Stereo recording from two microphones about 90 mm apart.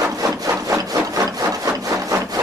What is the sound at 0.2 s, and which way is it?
Wood, 40° right (ahead or behind).